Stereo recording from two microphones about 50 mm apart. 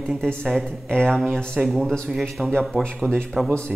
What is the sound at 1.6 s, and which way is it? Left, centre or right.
Speech, centre.